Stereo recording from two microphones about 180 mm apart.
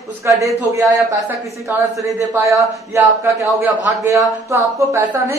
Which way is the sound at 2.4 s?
15° right (ahead or behind).